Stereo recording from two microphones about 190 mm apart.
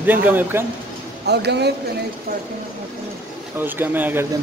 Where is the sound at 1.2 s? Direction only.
60° right (ahead or behind).